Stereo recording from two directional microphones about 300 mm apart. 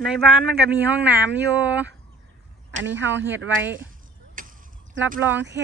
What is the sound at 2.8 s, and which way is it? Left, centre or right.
Speech, right.